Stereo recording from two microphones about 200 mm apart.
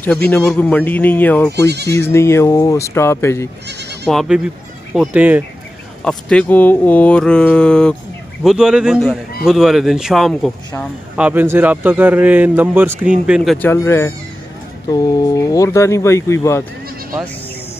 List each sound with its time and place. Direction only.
0.0 s speech: 5° left (ahead or behind)
1.7 s speech: 55° right (ahead or behind)
2.0 s speech: 10° left (ahead or behind)
4.1 s speech: centre (ahead or behind)
6.0 s speech: 5° left (ahead or behind)
13.7 s speech: 15° left (ahead or behind)